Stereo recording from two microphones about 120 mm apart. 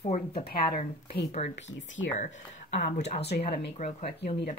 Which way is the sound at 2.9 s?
65° left (ahead or behind).